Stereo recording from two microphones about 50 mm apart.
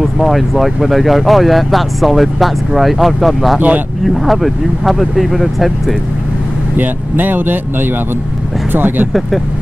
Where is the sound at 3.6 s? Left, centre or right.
Right.